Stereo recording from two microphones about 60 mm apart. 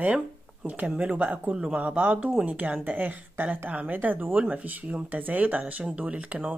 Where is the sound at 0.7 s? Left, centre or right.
Right.